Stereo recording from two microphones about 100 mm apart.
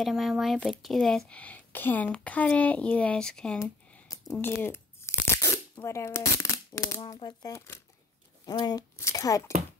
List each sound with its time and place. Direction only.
0.0 s speech: centre (ahead or behind)
4.1 s a sound: 35° left (ahead or behind)
4.4 s tearing: 20° left (ahead or behind)
7.2 s speech: 35° left (ahead or behind)
8.5 s speech: 45° left (ahead or behind)
8.9 s speech: 35° left (ahead or behind)